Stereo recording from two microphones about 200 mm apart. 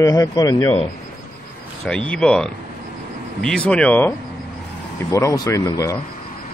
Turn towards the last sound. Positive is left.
turn(degrees=15)  # may be behind; listen again after turning